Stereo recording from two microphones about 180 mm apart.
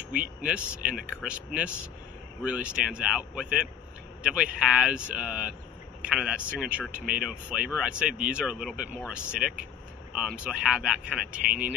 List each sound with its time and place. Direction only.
0.1 s speech: 50° right (ahead or behind)
0.5 s speech: 5° right (ahead or behind)
11.4 s speech: 50° right (ahead or behind)